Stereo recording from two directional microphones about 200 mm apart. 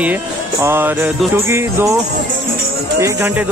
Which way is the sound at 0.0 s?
10° right (ahead or behind).